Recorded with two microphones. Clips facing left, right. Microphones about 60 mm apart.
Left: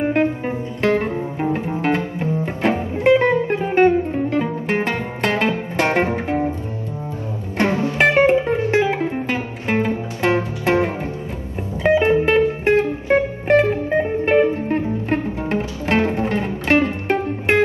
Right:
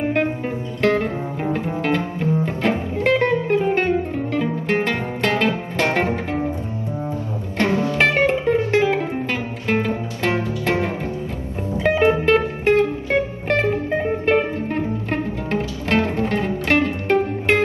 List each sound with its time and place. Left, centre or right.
0.0 s music: left
7.5 s music: left
11.8 s music: centre